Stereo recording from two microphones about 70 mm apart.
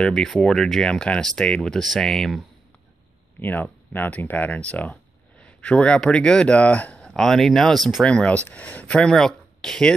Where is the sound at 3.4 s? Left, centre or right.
Left; by 8.1 s centre.